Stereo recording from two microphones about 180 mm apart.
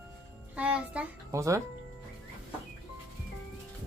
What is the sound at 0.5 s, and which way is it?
Speech, 5° right (ahead or behind).